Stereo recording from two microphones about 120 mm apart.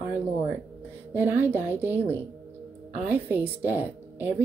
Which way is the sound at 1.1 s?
15° right (ahead or behind).